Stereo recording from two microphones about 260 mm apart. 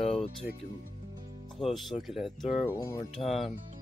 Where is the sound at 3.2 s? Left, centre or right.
Centre.